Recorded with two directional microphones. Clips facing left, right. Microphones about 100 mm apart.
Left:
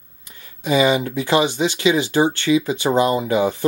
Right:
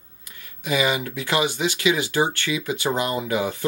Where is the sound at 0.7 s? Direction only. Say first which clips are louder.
Left 6 dB; 30° left (ahead or behind).